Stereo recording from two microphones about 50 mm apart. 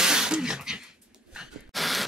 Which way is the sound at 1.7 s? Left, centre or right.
Centre.